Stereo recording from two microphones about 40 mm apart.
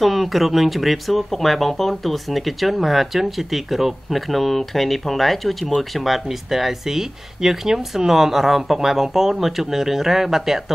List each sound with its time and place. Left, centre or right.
0.0 s speech: centre